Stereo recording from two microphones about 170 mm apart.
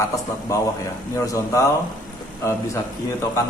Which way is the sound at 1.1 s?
20° left (ahead or behind).